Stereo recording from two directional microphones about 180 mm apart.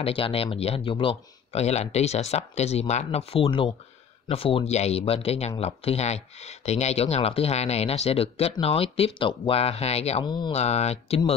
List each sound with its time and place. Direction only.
0.0 s speech: 30° left (ahead or behind)
10.6 s speech: 35° left (ahead or behind)